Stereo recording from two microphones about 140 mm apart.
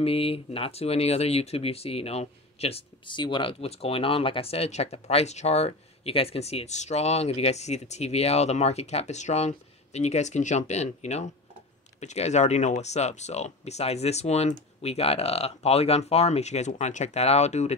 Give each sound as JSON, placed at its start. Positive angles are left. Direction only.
{"t": 0.0, "sound": "speech", "side_deg": 45}